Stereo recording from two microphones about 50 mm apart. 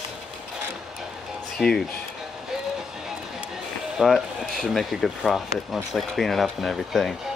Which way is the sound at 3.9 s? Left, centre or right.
Centre.